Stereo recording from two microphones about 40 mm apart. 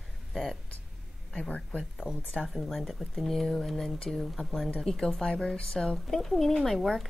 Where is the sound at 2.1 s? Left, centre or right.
Centre.